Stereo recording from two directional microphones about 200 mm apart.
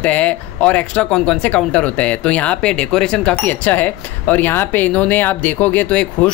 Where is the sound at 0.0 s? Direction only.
5° left (ahead or behind).